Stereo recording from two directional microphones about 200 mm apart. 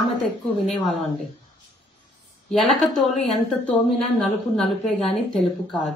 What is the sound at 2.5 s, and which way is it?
A woman's voice, centre (ahead or behind).